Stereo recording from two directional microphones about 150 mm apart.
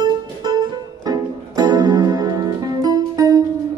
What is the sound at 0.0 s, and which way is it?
Music, 30° right (ahead or behind).